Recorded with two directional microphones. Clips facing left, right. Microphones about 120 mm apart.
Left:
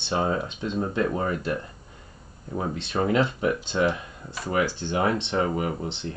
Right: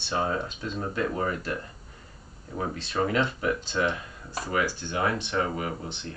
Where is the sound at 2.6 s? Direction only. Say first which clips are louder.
Left 2 dB; 25° left (ahead or behind).